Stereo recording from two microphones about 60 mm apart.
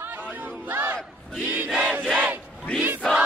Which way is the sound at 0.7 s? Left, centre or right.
Right.